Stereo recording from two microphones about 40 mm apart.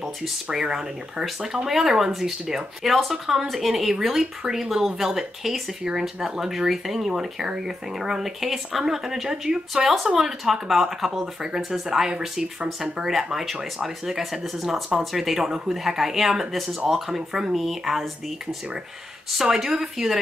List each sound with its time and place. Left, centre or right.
0.5 s speech: centre
19.4 s speech: centre